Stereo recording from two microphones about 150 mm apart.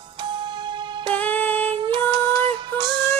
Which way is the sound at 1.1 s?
10° left (ahead or behind).